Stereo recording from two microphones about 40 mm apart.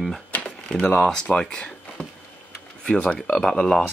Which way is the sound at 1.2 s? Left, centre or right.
Left.